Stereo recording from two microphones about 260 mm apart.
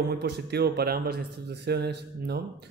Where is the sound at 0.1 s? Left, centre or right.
Right.